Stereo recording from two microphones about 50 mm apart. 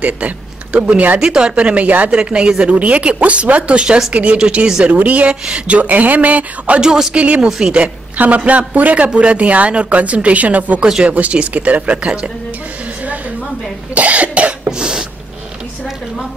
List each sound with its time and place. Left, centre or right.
0.7 s a sound: right
1.2 s speech: centre
2.0 s speech: centre
5.3 s a sound: right
6.8 s a woman's voice: centre
7.2 s speech: right
7.4 s a woman's voice: centre
7.7 s a woman's voice: right
10.8 s a woman's voice: centre
11.1 s speech: right
13.9 s cough: right
14.7 s throat clearing: centre